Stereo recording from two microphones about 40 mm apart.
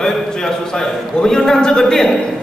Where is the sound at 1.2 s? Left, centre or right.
Centre.